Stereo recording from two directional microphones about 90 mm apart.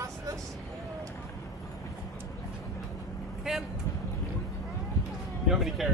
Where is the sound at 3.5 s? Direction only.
5° right (ahead or behind).